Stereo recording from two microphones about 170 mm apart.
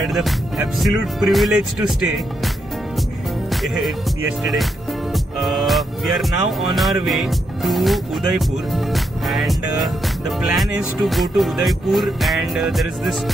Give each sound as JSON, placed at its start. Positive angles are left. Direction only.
{"t": 0.1, "sound": "music", "side_deg": 0}
{"t": 3.6, "sound": "music", "side_deg": 0}
{"t": 5.1, "sound": "music", "side_deg": 0}